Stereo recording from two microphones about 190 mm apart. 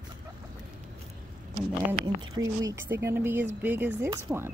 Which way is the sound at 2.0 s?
20° right (ahead or behind).